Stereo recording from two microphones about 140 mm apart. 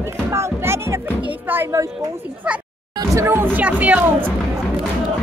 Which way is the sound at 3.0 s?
20° right (ahead or behind).